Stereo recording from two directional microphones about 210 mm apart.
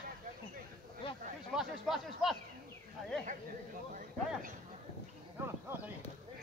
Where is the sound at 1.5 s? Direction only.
Centre (ahead or behind).